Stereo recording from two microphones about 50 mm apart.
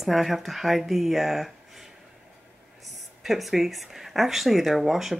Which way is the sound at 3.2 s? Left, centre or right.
Centre.